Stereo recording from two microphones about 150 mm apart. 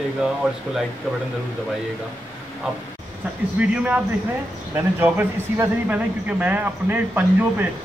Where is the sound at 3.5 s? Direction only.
10° right (ahead or behind).